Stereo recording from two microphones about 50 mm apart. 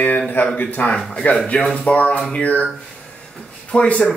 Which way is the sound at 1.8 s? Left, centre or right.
Left.